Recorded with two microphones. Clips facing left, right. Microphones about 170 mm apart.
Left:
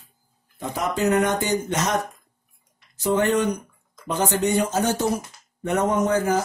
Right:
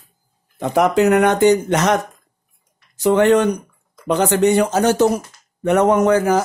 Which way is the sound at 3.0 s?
75° right (ahead or behind).